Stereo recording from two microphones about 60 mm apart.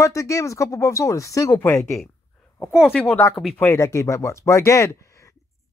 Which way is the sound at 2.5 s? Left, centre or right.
Centre.